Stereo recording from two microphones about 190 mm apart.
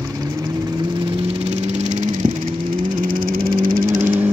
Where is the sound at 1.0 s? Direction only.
35° right (ahead or behind).